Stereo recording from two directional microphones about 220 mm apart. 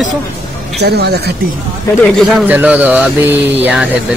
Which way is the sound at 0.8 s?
45° right (ahead or behind).